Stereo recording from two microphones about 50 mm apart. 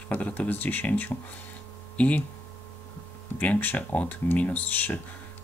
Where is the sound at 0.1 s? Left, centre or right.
Left.